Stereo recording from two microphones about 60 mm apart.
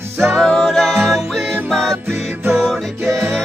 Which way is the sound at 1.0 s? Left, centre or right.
Centre.